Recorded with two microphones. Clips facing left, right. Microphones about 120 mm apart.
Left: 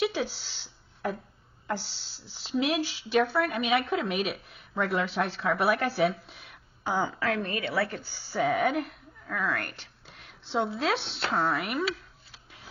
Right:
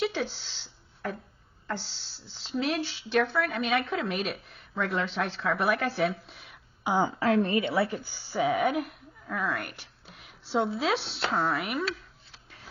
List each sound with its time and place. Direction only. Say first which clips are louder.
0.0 s a sound: left 1 dB; 5° left (ahead or behind)
1.7 s speech: left 2 dB; 5° left (ahead or behind)
7.0 s a woman's voice: right 5 dB; 25° right (ahead or behind)
8.5 s speech: even; centre (ahead or behind)